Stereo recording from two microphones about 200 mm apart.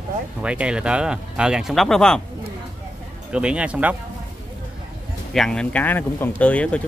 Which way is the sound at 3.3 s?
5° right (ahead or behind).